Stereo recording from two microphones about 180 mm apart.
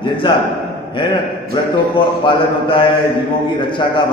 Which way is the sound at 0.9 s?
25° left (ahead or behind).